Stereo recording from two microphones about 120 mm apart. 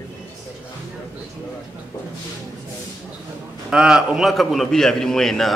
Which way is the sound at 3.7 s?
5° right (ahead or behind).